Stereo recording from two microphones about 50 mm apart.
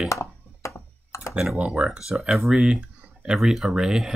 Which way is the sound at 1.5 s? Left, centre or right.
Right.